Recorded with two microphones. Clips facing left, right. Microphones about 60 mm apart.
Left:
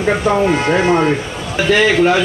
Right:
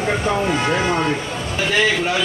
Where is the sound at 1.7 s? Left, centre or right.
Left.